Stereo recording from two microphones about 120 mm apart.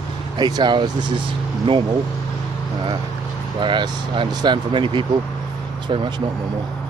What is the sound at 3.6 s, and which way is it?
Speech, 45° right (ahead or behind).